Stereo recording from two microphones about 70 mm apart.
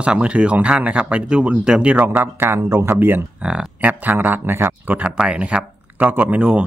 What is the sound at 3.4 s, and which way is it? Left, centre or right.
Speech, centre.